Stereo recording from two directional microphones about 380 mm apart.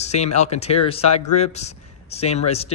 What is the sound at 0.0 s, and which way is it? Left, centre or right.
Speech, centre.